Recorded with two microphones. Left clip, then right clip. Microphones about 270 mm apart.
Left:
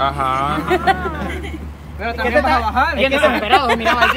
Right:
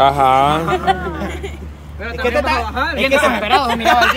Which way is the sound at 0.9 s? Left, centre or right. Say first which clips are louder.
Even; left.